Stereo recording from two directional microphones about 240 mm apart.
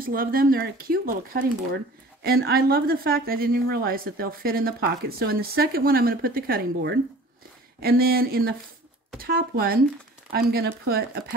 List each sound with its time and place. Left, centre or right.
0.0 s a woman's voice: right